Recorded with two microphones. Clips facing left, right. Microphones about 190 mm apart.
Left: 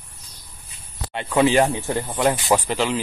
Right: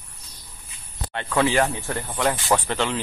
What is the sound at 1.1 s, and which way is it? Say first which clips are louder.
Speech: left 4 dB; 15° left (ahead or behind).